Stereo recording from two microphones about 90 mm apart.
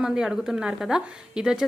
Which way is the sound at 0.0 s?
10° right (ahead or behind).